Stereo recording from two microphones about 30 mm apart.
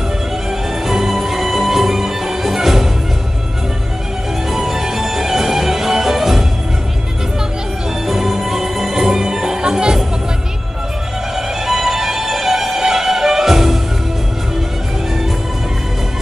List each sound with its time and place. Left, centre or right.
0.5 s music: centre
4.5 s music: centre
8.1 s music: centre; by 9.9 s right
11.3 s music: centre